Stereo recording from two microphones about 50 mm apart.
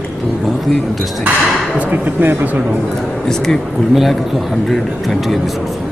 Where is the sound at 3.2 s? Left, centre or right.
Centre.